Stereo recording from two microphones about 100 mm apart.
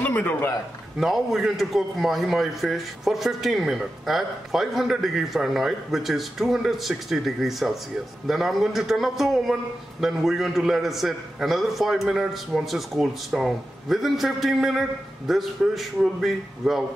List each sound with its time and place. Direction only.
0.0 s a man's voice: 20° left (ahead or behind)
0.9 s a man's voice: centre (ahead or behind)